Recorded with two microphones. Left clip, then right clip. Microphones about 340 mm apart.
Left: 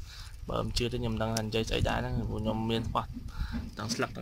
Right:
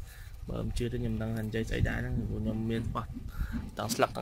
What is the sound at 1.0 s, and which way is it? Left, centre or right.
Speech, left.